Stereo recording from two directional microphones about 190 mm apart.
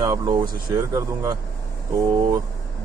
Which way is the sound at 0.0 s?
20° right (ahead or behind).